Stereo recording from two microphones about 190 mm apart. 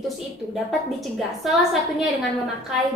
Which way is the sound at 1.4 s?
Centre (ahead or behind).